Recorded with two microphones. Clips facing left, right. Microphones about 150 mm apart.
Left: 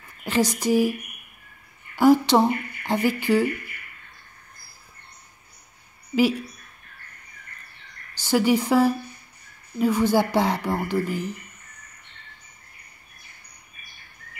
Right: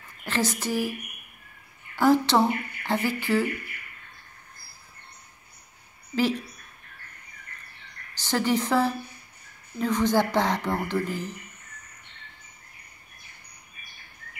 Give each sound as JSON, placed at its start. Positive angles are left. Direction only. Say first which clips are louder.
{"t": 0.2, "sound": "speech", "louder": "left 5 dB", "side_deg": 15}
{"t": 2.0, "sound": "speech", "louder": "left 4 dB", "side_deg": 10}
{"t": 6.1, "sound": "a woman's voice", "louder": "left 4 dB", "side_deg": 10}
{"t": 8.2, "sound": "a woman's voice", "louder": "left 5 dB", "side_deg": 10}